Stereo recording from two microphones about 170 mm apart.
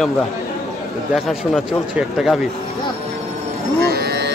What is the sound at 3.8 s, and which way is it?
Livestock, 70° right (ahead or behind).